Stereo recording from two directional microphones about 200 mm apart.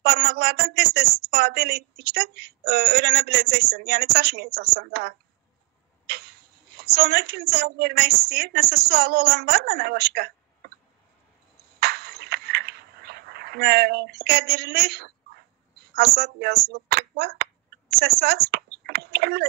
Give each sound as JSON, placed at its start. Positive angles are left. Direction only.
{"t": 0.0, "sound": "a woman's voice", "side_deg": -55}
{"t": 11.8, "sound": "a sound", "side_deg": -55}
{"t": 15.9, "sound": "speech", "side_deg": -55}